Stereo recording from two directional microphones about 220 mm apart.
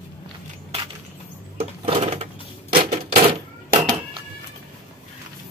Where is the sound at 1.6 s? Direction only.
25° right (ahead or behind).